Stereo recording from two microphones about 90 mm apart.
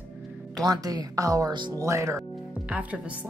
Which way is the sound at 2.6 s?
15° right (ahead or behind).